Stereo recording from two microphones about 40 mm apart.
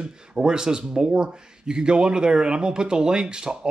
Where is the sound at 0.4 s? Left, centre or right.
Centre.